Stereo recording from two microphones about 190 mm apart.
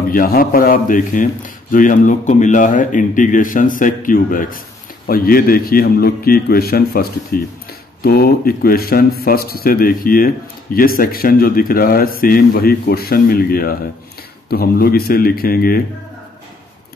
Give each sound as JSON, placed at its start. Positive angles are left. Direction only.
{"t": 0.1, "sound": "speech", "side_deg": 50}